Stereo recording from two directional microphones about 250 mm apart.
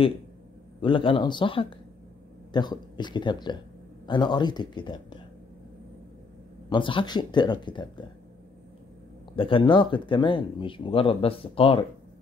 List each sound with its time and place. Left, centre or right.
0.7 s a man's voice: left
6.7 s a man's voice: centre
9.3 s speech: left